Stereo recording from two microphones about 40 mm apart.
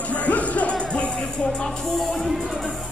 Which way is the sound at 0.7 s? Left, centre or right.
Left.